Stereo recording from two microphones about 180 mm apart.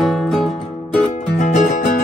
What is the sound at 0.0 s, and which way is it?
Music, centre (ahead or behind).